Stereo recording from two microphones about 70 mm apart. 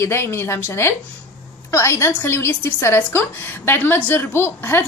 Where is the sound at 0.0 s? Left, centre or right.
Left.